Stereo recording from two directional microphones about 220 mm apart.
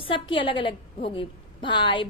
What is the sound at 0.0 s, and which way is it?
A woman's voice, 25° left (ahead or behind).